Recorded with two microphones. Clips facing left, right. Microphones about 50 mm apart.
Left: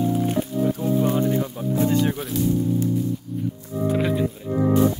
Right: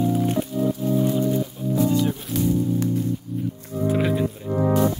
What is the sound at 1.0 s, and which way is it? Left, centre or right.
Music, left.